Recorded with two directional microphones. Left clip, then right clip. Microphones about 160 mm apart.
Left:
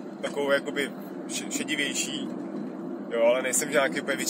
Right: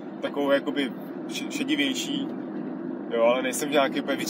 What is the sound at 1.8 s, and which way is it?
Speech, 5° right (ahead or behind).